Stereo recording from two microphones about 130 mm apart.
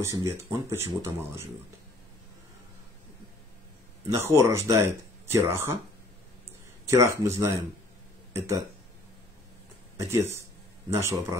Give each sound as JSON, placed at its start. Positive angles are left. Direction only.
{"t": 0.0, "sound": "speech", "side_deg": -20}
{"t": 4.1, "sound": "speech", "side_deg": -20}
{"t": 6.9, "sound": "speech", "side_deg": -20}
{"t": 9.9, "sound": "speech", "side_deg": -20}